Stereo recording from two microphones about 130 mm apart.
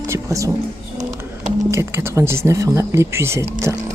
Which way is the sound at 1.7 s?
20° right (ahead or behind).